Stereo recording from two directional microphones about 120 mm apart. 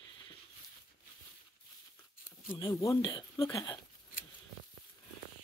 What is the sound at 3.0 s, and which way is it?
Speech, 40° left (ahead or behind).